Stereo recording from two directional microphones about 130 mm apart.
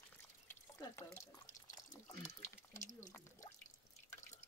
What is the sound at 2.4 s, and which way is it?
Speech, 70° left (ahead or behind).